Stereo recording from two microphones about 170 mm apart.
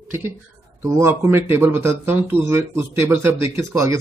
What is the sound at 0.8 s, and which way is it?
Speech, 15° right (ahead or behind).